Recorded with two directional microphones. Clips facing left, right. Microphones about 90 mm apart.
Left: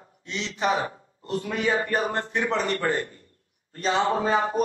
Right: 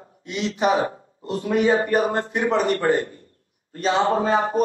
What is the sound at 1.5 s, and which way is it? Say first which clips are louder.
A man's voice: right 7 dB; 30° right (ahead or behind).